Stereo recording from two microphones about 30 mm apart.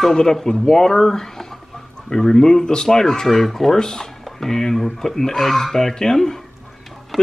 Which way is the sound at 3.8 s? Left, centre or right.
Centre.